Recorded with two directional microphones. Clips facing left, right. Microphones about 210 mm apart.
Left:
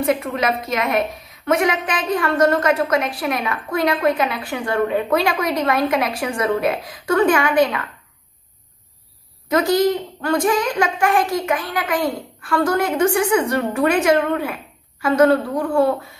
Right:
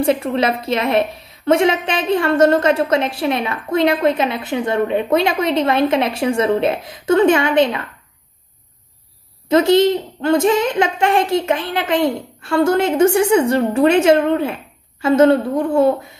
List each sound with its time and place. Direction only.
0.0 s a woman's voice: 30° right (ahead or behind)
9.5 s a woman's voice: 25° right (ahead or behind)